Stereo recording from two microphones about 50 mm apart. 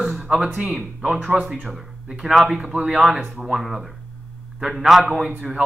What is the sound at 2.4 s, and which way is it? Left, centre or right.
A man's voice, centre.